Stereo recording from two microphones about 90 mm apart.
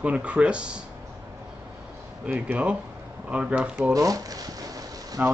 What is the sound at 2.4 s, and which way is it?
Speech, 15° right (ahead or behind).